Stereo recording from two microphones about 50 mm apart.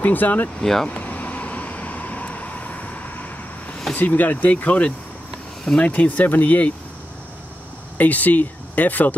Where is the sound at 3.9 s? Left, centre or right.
Left.